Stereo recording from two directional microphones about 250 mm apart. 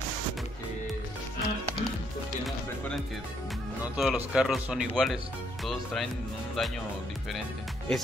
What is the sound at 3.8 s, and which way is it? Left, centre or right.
Speech, centre.